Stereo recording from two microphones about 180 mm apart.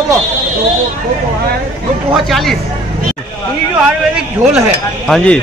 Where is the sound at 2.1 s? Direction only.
Centre (ahead or behind).